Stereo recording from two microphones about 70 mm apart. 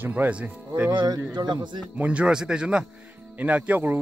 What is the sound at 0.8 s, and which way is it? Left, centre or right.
Speech, right.